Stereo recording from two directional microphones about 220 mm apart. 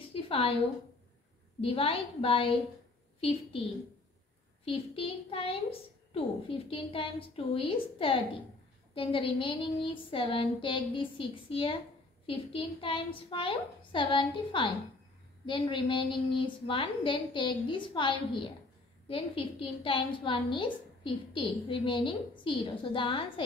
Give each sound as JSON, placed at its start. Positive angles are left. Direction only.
{"t": 0.1, "sound": "a sound", "side_deg": 25}
{"t": 1.6, "sound": "a woman's voice", "side_deg": 25}
{"t": 4.6, "sound": "a woman's voice", "side_deg": 25}